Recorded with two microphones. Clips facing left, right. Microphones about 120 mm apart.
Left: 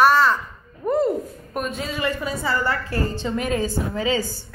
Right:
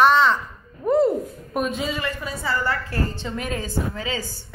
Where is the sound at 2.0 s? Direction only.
15° left (ahead or behind).